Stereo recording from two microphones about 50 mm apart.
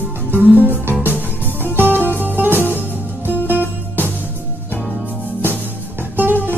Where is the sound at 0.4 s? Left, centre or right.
Right.